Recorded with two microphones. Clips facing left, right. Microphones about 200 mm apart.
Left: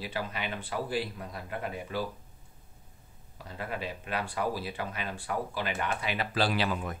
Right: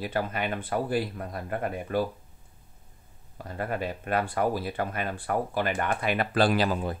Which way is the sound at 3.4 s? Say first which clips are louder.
Right 6 dB; 50° right (ahead or behind).